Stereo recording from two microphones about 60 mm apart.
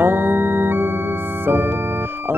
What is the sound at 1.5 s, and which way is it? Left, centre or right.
Organ, right.